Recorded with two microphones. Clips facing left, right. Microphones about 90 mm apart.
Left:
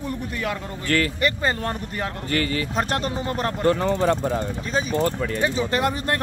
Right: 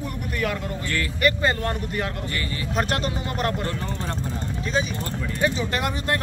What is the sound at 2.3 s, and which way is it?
Speech, 75° left (ahead or behind).